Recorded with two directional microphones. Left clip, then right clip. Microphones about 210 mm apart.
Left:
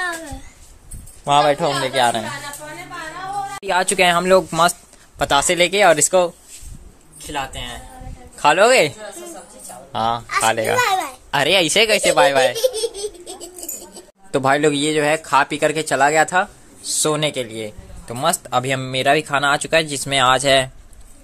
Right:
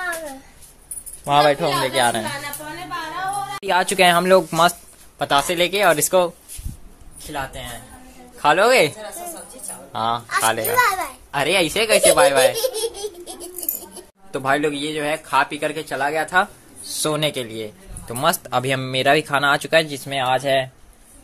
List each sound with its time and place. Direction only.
1.2 s a man's voice: centre (ahead or behind)
3.6 s a man's voice: centre (ahead or behind)
5.2 s a man's voice: 10° left (ahead or behind)
8.4 s speech: 15° left (ahead or behind)
9.9 s speech: 10° left (ahead or behind)
11.2 s speech: 30° left (ahead or behind)
12.5 s baby laughter: 5° left (ahead or behind)
14.3 s speech: 35° left (ahead or behind)
16.8 s a man's voice: 10° left (ahead or behind)